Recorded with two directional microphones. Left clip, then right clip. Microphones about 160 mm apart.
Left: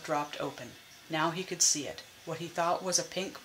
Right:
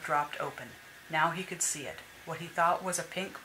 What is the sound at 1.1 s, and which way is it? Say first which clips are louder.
Speech: right 2 dB; 50° left (ahead or behind).